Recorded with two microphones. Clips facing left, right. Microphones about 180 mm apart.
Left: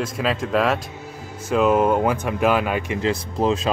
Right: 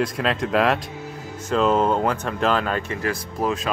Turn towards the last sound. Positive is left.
turn(degrees=25)  # may be behind; listen again after turning